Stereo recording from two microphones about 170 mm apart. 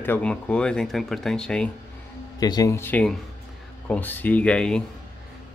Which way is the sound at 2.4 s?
20° left (ahead or behind).